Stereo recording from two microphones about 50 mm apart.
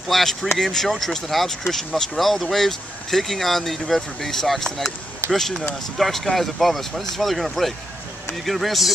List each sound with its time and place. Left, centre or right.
0.1 s speech: centre
5.2 s a sound: right
5.9 s speech: centre